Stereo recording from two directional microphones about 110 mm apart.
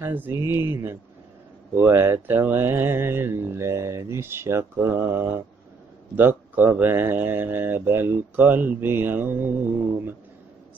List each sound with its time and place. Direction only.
0.0 s speech: 20° right (ahead or behind)
6.1 s speech: 15° right (ahead or behind)